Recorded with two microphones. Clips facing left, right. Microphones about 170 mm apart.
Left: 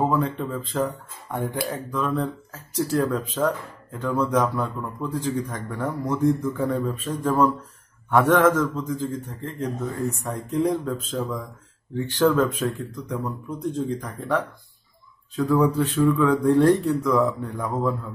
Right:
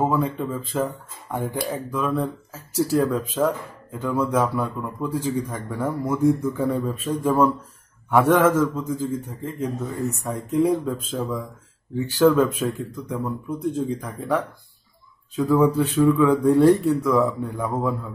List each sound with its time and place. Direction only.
0.0 s speech: 5° right (ahead or behind)